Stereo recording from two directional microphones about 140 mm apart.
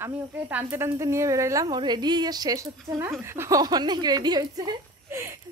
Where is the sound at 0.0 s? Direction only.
15° right (ahead or behind).